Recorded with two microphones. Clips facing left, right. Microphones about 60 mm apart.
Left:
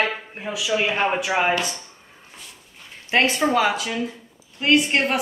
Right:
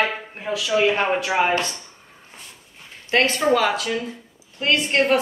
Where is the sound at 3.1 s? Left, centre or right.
Centre.